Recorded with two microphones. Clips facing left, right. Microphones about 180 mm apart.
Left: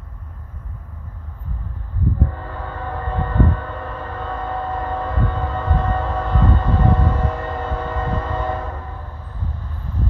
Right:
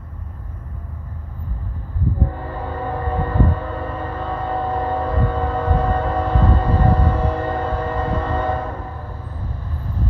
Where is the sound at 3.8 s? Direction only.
5° right (ahead or behind).